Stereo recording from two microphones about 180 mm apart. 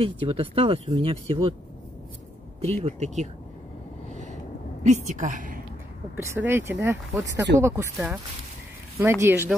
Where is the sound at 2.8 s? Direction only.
40° right (ahead or behind).